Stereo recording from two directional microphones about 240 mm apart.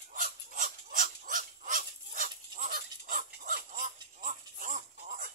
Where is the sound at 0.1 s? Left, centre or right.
Right.